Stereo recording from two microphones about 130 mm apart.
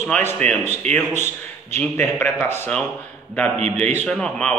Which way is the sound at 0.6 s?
60° right (ahead or behind).